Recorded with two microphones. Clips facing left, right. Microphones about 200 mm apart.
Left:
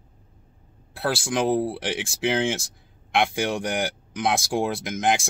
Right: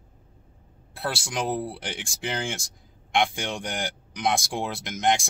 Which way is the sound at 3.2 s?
60° left (ahead or behind).